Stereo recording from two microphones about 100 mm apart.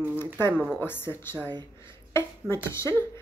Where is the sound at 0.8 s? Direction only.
20° left (ahead or behind).